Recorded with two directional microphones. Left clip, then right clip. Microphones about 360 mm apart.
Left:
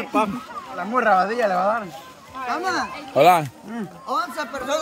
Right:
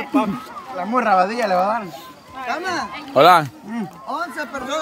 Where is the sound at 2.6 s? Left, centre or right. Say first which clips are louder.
Even; centre.